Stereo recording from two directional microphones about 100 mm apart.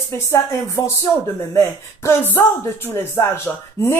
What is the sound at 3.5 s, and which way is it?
Speech, 10° left (ahead or behind).